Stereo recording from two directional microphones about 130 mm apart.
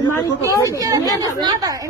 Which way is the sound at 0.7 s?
25° right (ahead or behind).